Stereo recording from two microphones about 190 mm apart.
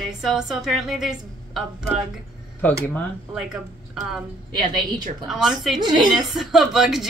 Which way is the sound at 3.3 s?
5° right (ahead or behind).